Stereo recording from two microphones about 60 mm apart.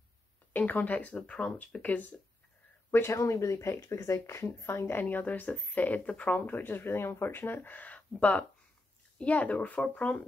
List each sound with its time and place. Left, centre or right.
0.5 s speech: left
2.9 s speech: left
5.0 s speech: left